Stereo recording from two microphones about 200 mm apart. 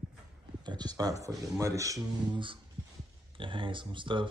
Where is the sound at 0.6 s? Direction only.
20° right (ahead or behind).